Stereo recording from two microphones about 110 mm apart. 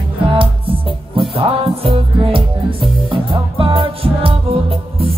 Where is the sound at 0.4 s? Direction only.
55° right (ahead or behind).